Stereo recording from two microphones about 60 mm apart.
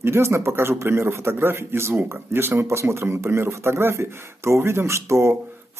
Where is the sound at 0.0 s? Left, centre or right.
Right.